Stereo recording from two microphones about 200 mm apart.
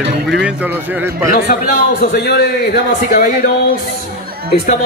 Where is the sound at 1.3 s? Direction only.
45° left (ahead or behind).